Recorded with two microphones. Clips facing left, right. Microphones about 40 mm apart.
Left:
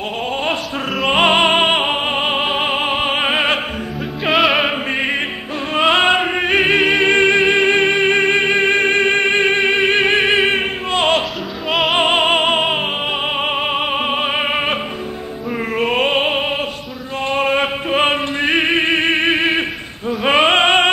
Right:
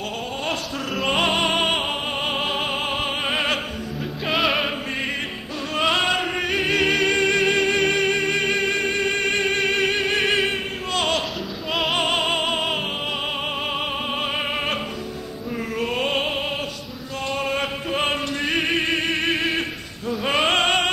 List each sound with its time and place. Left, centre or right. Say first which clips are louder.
1.1 s music: left 8 dB; left
4.3 s music: left 7 dB; centre
5.8 s music: left 7 dB; left
13.7 s music: left 7 dB; left
15.8 s opera: left 7 dB; left
17.3 s music: left 8 dB; left